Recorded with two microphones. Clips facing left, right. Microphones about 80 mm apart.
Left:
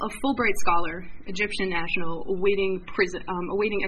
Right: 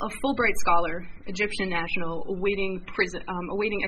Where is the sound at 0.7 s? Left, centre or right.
Right.